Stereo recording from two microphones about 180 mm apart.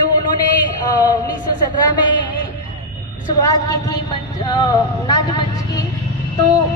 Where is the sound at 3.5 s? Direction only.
25° left (ahead or behind).